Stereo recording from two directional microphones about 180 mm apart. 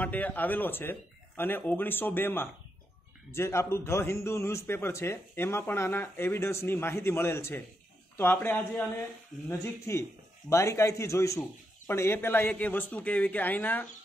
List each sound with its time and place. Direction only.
0.0 s a man's voice: 10° left (ahead or behind)